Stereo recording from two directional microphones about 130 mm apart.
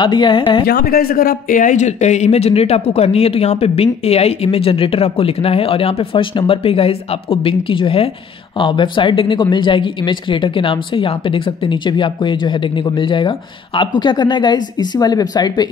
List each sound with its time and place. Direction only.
0.0 s speech: 35° left (ahead or behind)
1.1 s speech: 90° left; by 15.7 s 30° left (ahead or behind)